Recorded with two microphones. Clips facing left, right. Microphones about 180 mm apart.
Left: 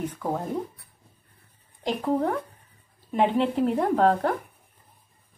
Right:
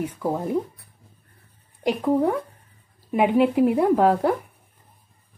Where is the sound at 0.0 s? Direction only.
10° right (ahead or behind).